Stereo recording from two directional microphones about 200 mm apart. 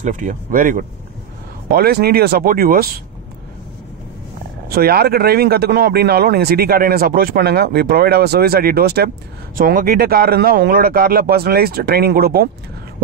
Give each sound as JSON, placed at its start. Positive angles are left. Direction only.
{"t": 0.0, "sound": "speech", "side_deg": -40}
{"t": 4.6, "sound": "speech", "side_deg": -50}